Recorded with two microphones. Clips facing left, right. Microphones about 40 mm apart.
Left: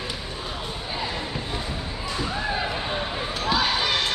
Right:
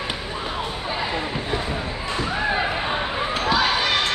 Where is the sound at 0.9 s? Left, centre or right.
Right.